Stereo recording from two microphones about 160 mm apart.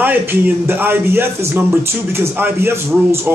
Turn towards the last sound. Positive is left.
turn(degrees=-15)  # may be behind; listen again after turning